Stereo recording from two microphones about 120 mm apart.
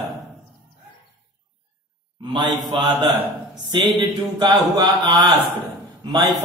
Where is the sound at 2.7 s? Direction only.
45° right (ahead or behind).